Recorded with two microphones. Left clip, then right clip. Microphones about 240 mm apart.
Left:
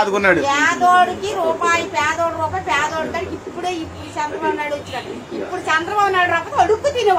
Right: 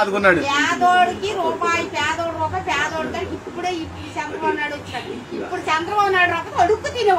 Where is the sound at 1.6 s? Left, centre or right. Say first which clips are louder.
Left 3 dB; right.